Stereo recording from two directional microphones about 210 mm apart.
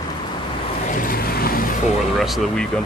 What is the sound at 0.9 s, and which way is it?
Vehicle, 40° left (ahead or behind).